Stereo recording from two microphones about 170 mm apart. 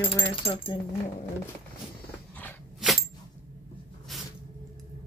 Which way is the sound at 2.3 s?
10° left (ahead or behind).